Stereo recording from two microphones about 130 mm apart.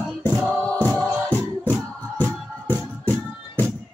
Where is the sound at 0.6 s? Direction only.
10° left (ahead or behind).